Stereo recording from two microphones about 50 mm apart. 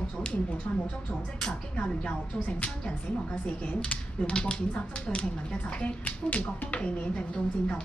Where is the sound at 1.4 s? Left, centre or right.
Centre.